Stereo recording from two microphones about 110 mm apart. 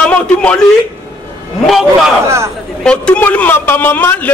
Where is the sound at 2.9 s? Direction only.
10° left (ahead or behind).